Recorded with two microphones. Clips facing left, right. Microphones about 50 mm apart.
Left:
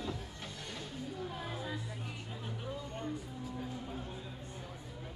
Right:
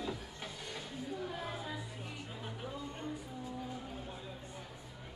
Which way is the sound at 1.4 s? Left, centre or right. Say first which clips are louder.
Left 1 dB; centre.